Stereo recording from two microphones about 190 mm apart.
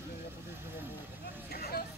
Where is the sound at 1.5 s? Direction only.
55° left (ahead or behind).